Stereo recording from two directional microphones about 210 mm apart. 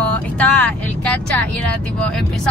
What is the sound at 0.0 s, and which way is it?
Vehicle, 5° left (ahead or behind).